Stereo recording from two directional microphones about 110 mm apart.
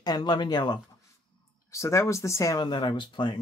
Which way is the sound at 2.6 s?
40° left (ahead or behind).